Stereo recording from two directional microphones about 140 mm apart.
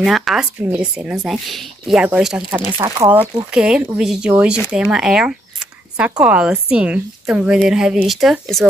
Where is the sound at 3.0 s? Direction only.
10° right (ahead or behind).